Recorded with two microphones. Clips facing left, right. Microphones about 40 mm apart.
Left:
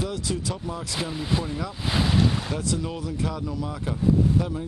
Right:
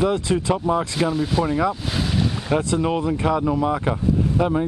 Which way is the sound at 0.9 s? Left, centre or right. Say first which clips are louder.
Right 7 dB; centre.